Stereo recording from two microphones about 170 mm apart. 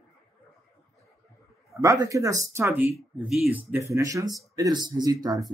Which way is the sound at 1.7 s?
20° right (ahead or behind).